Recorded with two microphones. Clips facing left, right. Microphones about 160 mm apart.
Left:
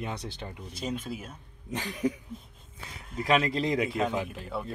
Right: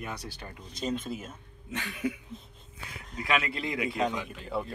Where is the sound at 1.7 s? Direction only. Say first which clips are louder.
Left 3 dB; 35° left (ahead or behind).